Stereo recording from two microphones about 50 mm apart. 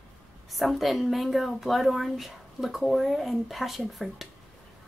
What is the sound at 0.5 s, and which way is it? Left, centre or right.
A woman's voice, centre.